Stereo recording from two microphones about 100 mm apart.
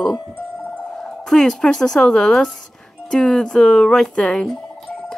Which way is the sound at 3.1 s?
5° left (ahead or behind).